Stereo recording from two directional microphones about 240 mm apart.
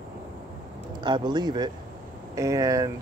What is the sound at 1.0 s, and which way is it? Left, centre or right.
Speech, centre.